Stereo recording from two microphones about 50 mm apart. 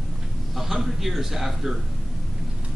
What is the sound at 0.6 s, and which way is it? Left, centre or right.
A man's voice, centre.